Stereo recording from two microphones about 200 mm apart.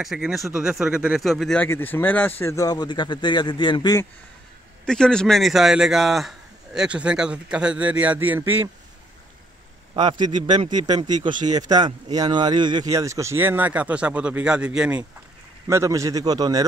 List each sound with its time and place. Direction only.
0.0 s a man's voice: centre (ahead or behind); by 4.1 s 20° left (ahead or behind)
4.8 s a man's voice: 5° left (ahead or behind)
9.9 s a man's voice: 20° right (ahead or behind)
11.5 s speech: 20° right (ahead or behind)